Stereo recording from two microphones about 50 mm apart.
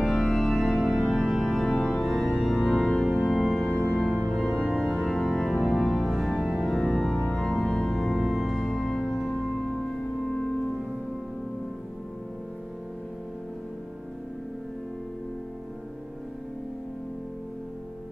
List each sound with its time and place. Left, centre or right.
0.0 s organ: centre
3.8 s music: centre
4.3 s organ: centre
7.9 s music: centre